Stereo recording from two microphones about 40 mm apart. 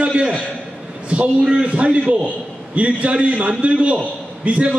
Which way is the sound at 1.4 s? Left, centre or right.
Right.